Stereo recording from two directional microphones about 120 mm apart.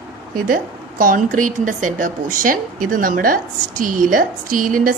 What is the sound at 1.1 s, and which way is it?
Speech, 90° right.